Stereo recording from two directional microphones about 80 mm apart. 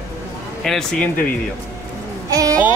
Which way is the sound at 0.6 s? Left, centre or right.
Centre.